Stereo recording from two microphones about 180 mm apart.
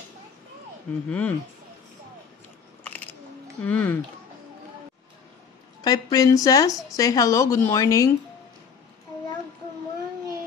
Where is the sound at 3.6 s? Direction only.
10° left (ahead or behind).